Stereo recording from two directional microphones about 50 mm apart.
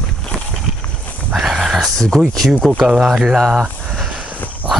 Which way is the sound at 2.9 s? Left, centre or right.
Centre.